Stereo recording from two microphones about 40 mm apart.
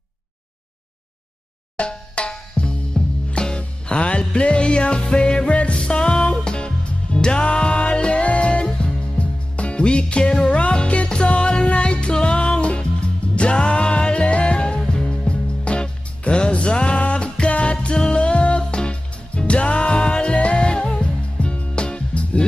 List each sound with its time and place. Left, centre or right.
1.8 s music: left